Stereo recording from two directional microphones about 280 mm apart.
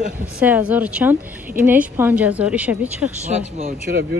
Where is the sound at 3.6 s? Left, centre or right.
Right.